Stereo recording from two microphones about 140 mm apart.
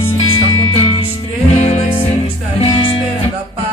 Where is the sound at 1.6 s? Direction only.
50° left (ahead or behind).